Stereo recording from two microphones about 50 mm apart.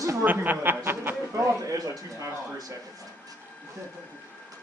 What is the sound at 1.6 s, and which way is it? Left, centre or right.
Speech, right.